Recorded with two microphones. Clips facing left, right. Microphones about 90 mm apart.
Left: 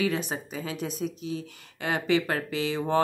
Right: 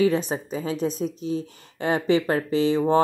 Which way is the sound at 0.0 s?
35° right (ahead or behind).